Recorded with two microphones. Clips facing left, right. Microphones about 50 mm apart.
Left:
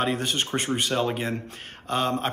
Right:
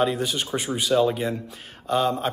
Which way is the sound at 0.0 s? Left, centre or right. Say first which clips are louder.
Right 2 dB; left.